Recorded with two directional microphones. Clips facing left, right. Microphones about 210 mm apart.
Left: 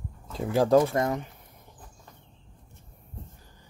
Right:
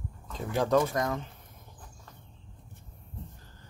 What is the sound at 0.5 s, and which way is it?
Speech, 30° left (ahead or behind).